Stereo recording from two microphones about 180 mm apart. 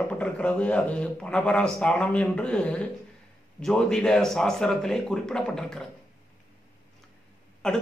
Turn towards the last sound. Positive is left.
turn(degrees=5)  # may be behind; listen again after turning